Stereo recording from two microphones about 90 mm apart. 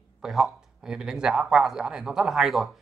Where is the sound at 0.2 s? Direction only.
5° right (ahead or behind).